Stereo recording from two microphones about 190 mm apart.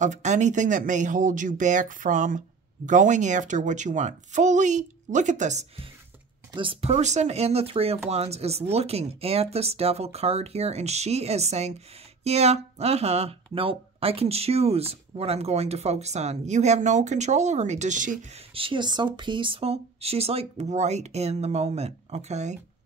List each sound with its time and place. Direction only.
0.0 s speech: 40° right (ahead or behind)
18.5 s speech: 25° right (ahead or behind)